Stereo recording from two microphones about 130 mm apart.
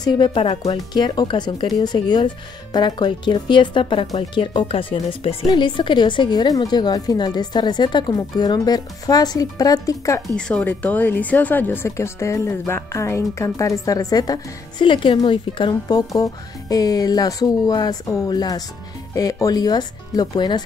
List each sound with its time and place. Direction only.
0.0 s a woman's voice: 35° left (ahead or behind)
5.5 s a woman's voice: 35° left (ahead or behind)
10.3 s a woman's voice: 10° left (ahead or behind); by 20.6 s 35° left (ahead or behind)